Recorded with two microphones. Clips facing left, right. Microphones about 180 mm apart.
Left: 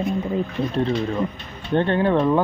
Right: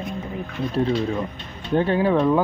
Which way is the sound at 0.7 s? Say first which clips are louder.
Right 4 dB; 5° right (ahead or behind).